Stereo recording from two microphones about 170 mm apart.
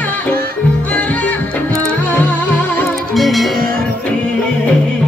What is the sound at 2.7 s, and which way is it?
Music, centre (ahead or behind).